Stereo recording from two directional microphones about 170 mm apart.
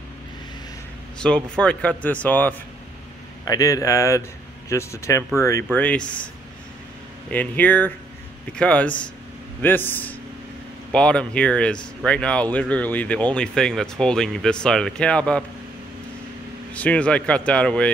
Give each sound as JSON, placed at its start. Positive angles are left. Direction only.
{"t": 1.1, "sound": "a sound", "side_deg": 5}
{"t": 1.6, "sound": "speech", "side_deg": 5}
{"t": 3.4, "sound": "speech", "side_deg": 20}
{"t": 7.2, "sound": "speech", "side_deg": 10}
{"t": 16.7, "sound": "speech", "side_deg": 10}